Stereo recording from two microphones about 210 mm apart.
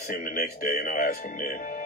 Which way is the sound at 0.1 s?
45° left (ahead or behind).